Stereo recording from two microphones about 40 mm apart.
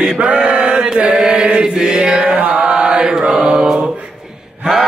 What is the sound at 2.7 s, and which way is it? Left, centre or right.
A capella, right.